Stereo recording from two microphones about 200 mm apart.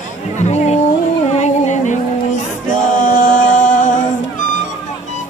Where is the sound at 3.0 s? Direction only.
40° left (ahead or behind).